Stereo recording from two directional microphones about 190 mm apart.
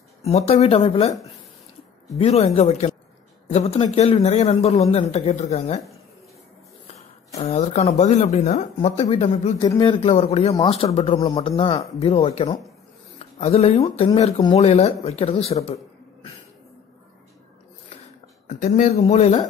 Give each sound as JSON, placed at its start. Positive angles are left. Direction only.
{"t": 0.2, "sound": "speech", "side_deg": 35}
{"t": 2.1, "sound": "speech", "side_deg": 30}
{"t": 7.4, "sound": "speech", "side_deg": 35}
{"t": 15.6, "sound": "a sound", "side_deg": 30}
{"t": 18.5, "sound": "speech", "side_deg": 40}